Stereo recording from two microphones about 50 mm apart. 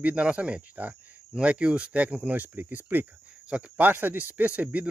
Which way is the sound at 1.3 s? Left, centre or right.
Right.